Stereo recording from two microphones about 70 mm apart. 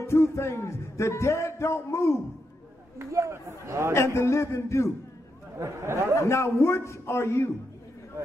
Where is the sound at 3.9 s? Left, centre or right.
Left.